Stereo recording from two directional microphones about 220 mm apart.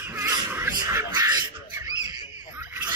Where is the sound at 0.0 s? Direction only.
10° right (ahead or behind).